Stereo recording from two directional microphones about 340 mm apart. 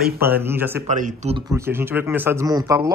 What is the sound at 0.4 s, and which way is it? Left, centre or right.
Speech, centre.